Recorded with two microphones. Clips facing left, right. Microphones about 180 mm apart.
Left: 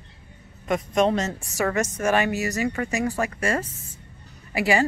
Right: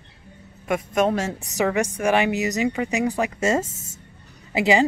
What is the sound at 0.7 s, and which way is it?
Speech, 5° right (ahead or behind).